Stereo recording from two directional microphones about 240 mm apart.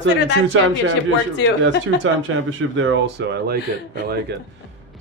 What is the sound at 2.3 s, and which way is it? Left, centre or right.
Speech, right.